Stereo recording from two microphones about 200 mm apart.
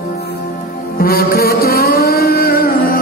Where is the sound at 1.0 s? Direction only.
45° left (ahead or behind).